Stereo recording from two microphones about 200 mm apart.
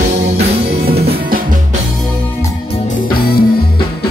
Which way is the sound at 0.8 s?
50° right (ahead or behind).